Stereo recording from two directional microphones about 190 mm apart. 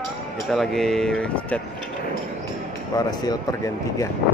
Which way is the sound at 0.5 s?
Centre (ahead or behind).